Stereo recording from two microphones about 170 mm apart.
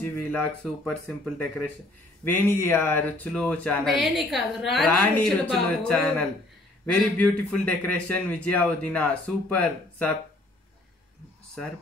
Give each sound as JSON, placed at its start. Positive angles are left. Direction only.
{"t": 0.0, "sound": "a man's voice", "side_deg": 10}